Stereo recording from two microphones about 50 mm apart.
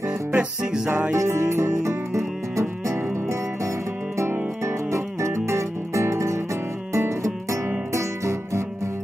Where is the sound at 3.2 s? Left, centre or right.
Right.